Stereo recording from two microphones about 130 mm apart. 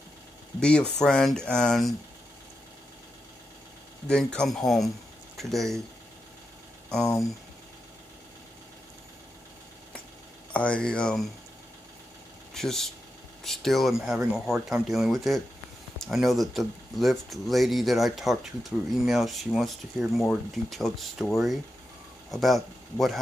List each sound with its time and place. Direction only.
0.6 s speech: 5° left (ahead or behind)
4.1 s speech: 5° left (ahead or behind)
6.9 s speech: 5° left (ahead or behind)
10.5 s speech: 10° left (ahead or behind)
12.5 s speech: 5° left (ahead or behind)